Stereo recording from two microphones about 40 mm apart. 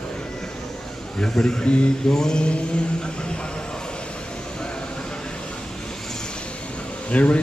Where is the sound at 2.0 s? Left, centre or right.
Centre.